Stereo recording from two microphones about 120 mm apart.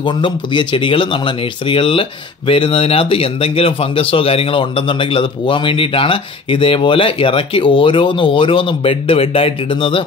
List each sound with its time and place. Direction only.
0.0 s speech: 40° left (ahead or behind)